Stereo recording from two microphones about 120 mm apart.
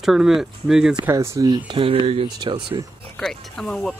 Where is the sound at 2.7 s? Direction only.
35° right (ahead or behind).